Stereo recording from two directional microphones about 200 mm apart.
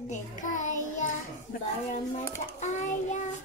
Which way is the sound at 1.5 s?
45° left (ahead or behind).